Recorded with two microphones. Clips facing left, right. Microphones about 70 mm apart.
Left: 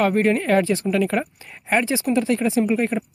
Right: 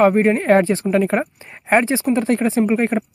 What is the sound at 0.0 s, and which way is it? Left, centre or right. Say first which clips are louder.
A woman's voice: right 4 dB; right.